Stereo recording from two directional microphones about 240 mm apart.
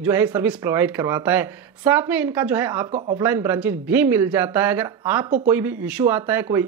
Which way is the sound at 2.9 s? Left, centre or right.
Right.